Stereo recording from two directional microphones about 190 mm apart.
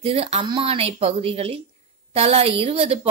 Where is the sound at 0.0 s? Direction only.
30° right (ahead or behind).